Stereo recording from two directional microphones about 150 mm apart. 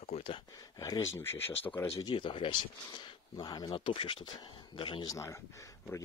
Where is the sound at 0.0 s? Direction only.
40° left (ahead or behind).